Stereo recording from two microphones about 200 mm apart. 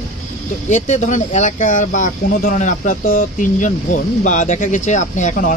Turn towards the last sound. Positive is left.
turn(degrees=40)  # may be behind; listen again after turning